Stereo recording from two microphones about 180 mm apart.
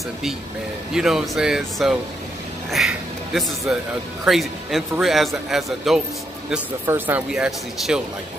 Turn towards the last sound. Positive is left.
turn(degrees=-5)  # may be behind; listen again after turning